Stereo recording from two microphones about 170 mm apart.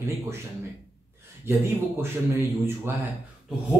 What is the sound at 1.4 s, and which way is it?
Speech, 15° right (ahead or behind).